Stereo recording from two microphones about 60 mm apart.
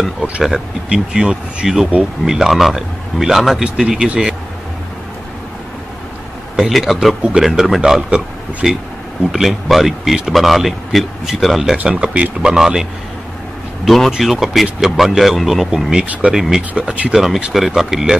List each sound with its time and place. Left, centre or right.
0.8 s speech: centre
6.5 s speech: centre
11.7 s speech: centre
13.8 s speech: centre
14.1 s speech: centre
16.1 s speech: right
16.3 s speech: centre
16.7 s speech: centre
17.1 s speech: centre